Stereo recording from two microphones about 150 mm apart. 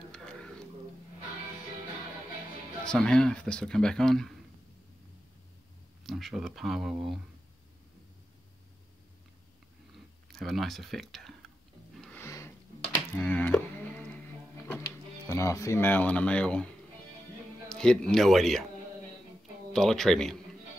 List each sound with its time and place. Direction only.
0.1 s a sound: 5° left (ahead or behind)
2.8 s speech: 5° left (ahead or behind)
6.0 s speech: centre (ahead or behind)
9.9 s speech: centre (ahead or behind)
12.0 s music: 5° left (ahead or behind)
12.3 s a sound: 20° left (ahead or behind)
12.8 s music: 10° left (ahead or behind)
17.6 s speech: 5° left (ahead or behind)
19.7 s speech: centre (ahead or behind)